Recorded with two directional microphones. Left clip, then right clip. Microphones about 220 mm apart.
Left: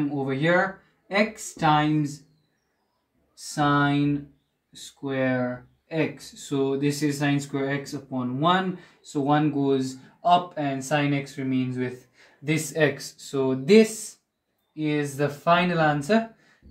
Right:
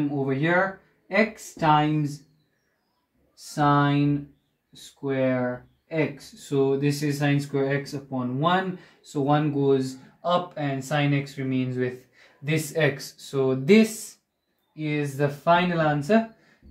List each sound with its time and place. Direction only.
0.1 s speech: centre (ahead or behind)
3.5 s speech: 5° right (ahead or behind)
6.5 s speech: 10° right (ahead or behind)
11.0 s speech: 20° right (ahead or behind); by 16.3 s centre (ahead or behind)